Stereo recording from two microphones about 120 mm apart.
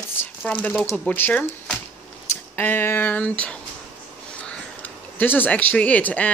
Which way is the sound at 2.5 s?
20° left (ahead or behind).